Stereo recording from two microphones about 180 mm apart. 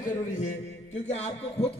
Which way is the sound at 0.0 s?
40° left (ahead or behind).